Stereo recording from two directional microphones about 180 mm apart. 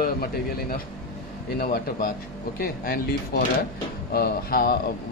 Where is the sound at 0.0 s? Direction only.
55° left (ahead or behind).